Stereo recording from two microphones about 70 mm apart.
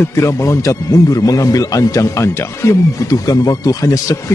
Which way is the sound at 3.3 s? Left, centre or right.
Left.